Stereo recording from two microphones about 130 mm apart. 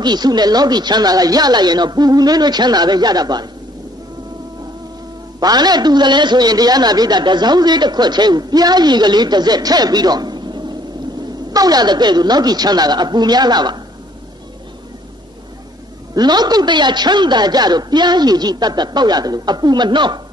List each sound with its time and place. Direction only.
0.0 s a man's voice: 35° right (ahead or behind)
5.4 s a man's voice: 30° right (ahead or behind)
16.2 s a man's voice: 30° right (ahead or behind)